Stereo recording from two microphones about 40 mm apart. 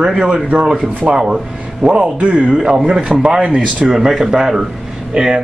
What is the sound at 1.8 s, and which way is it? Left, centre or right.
Speech, right.